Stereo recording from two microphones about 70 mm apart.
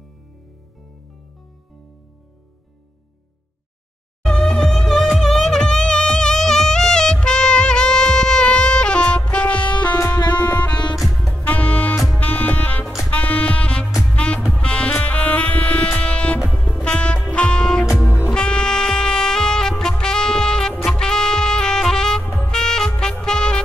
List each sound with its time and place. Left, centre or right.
4.3 s music: centre
9.7 s music: left
9.9 s music: left
10.3 s music: left
11.0 s music: centre
11.3 s music: left
12.8 s music: centre
13.1 s music: left
13.8 s music: centre
14.1 s music: centre